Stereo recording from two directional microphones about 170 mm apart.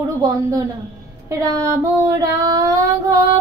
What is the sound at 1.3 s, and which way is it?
Child singing, 20° right (ahead or behind).